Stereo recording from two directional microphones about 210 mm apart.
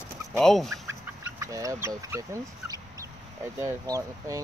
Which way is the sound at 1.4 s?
15° right (ahead or behind).